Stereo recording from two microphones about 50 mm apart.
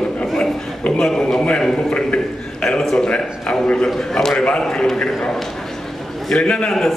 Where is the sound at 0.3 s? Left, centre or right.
Centre.